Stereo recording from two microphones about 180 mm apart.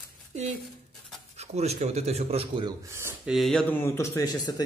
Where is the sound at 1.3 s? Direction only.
35° right (ahead or behind); by 3.2 s 15° right (ahead or behind).